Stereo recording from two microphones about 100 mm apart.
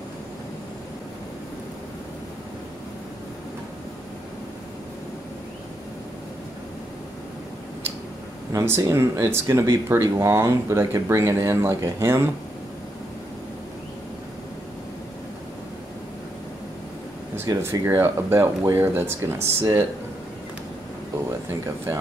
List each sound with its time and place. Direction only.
8.5 s speech: 30° right (ahead or behind)
17.5 s speech: 25° right (ahead or behind)
21.3 s speech: 30° right (ahead or behind)